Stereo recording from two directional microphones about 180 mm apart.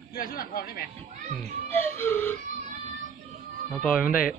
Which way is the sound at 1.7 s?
10° left (ahead or behind).